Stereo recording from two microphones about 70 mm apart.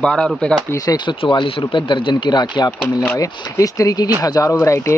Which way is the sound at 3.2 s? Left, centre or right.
Left.